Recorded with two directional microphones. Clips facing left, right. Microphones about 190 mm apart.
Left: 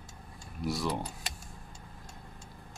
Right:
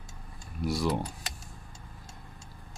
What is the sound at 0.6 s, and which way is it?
Speech, centre (ahead or behind).